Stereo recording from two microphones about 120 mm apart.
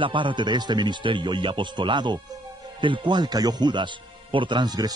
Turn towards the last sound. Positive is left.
turn(degrees=-35)  # may be behind; listen again after turning